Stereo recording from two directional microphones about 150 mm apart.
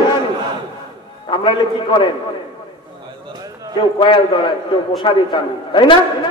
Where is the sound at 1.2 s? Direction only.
35° left (ahead or behind).